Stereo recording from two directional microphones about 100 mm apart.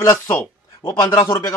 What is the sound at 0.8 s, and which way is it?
Speech, 30° left (ahead or behind).